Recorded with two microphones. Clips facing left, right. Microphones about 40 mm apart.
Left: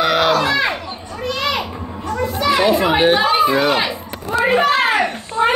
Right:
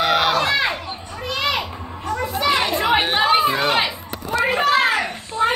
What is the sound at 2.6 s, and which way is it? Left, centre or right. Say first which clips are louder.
A child's voice: left 5 dB; centre.